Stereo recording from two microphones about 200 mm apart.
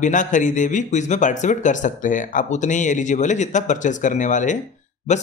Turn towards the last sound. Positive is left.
turn(degrees=35)  # may be behind; listen again after turning